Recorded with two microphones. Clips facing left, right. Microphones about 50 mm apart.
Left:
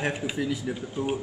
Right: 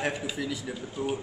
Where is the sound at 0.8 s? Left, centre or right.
Left.